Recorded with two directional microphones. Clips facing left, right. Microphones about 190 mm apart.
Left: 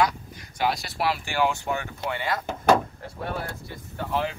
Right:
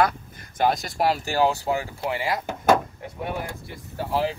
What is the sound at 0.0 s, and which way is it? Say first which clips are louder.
Speech: right 2 dB; 50° right (ahead or behind).